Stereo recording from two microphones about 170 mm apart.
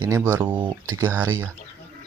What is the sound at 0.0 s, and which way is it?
Speech, 15° right (ahead or behind).